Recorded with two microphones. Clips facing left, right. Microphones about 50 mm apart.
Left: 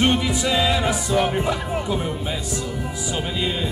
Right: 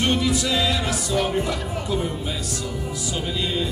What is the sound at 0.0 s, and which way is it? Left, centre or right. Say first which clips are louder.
Music: left 2 dB; left.